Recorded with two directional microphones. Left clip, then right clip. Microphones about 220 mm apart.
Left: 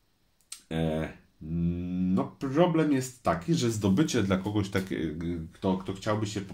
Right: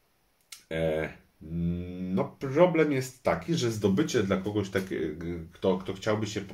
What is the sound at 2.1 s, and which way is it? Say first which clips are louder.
Speech: right 3 dB; 40° left (ahead or behind).